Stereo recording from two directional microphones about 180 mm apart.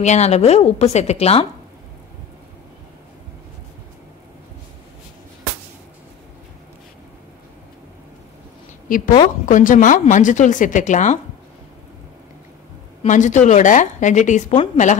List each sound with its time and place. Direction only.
0.0 s a woman's voice: 40° left (ahead or behind)
8.8 s a woman's voice: 50° left (ahead or behind)
13.0 s a woman's voice: 45° left (ahead or behind)